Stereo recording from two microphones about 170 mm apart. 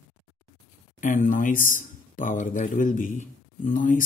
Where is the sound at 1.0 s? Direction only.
50° left (ahead or behind).